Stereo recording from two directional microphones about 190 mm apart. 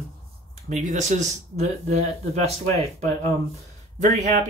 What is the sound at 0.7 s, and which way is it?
Speech, 40° right (ahead or behind).